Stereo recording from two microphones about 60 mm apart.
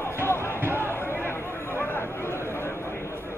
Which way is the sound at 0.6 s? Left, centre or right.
Right.